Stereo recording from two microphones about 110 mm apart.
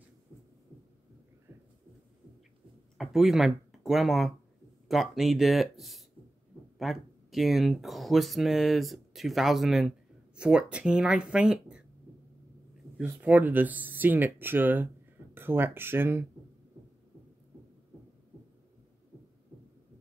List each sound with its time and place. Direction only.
3.0 s speech: 5° right (ahead or behind)
13.0 s speech: 15° right (ahead or behind)